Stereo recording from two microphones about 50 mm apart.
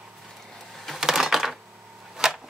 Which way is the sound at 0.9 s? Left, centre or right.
Centre.